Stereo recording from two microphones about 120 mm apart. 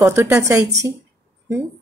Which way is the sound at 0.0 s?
20° right (ahead or behind).